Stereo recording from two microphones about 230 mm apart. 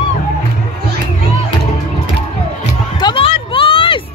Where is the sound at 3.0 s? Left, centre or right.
Left.